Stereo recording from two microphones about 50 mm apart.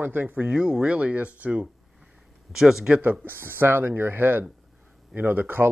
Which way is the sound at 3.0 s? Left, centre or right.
Right.